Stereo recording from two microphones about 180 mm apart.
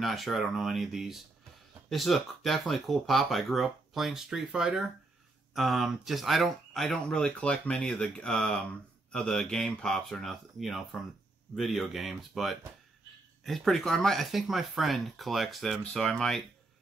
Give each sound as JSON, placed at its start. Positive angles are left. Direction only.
{"t": 0.0, "sound": "speech", "side_deg": 0}